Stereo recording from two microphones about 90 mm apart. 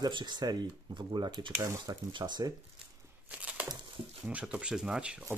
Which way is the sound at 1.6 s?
30° right (ahead or behind).